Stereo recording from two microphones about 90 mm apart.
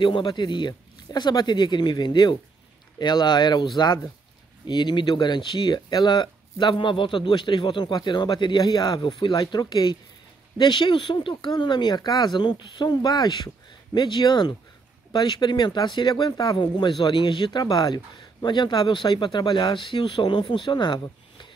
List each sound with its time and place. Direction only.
0.0 s speech: 60° left (ahead or behind)
9.5 s speech: 50° left (ahead or behind)
10.6 s speech: 60° left (ahead or behind); by 16.5 s 45° left (ahead or behind)
16.5 s speech: 60° left (ahead or behind)